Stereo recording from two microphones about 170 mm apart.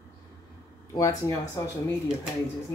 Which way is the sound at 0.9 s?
20° left (ahead or behind).